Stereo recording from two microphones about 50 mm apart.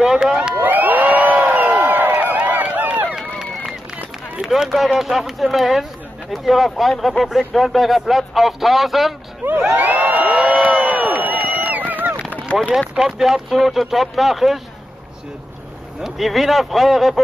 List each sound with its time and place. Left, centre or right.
0.0 s speech: centre
0.6 s crowd: right
3.2 s run: centre
4.4 s speech: centre
9.4 s a sound: right
10.3 s crowd: right
10.6 s a sound: right
12.9 s speech: centre
16.0 s speech: centre